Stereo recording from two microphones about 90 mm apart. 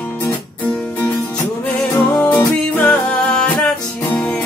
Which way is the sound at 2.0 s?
20° left (ahead or behind).